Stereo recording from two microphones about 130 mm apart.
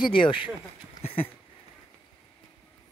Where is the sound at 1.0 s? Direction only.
45° left (ahead or behind).